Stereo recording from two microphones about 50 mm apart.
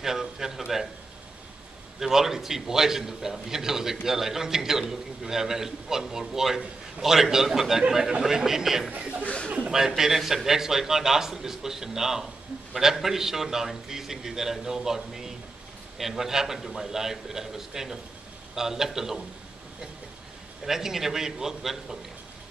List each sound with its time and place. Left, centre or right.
0.0 s a man's voice: centre
2.0 s a man's voice: centre
9.2 s speech: left
9.7 s a man's voice: centre
20.6 s a man's voice: centre